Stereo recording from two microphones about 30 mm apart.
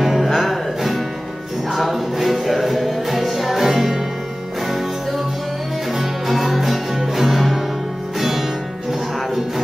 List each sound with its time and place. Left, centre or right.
0.0 s music: centre
6.2 s music: centre